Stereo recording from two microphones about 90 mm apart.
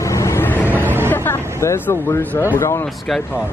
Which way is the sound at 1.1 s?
25° left (ahead or behind).